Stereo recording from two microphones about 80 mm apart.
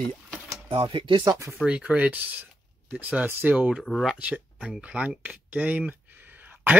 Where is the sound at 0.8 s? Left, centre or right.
Right.